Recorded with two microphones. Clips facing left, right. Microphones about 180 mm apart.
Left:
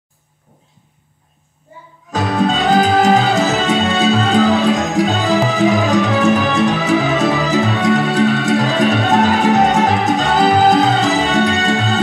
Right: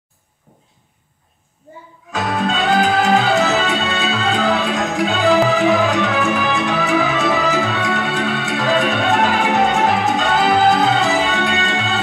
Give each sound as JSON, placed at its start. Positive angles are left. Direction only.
{"t": 2.0, "sound": "music", "side_deg": 40}